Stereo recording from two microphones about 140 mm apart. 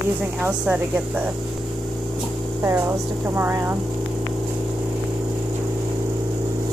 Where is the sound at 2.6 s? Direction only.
20° right (ahead or behind).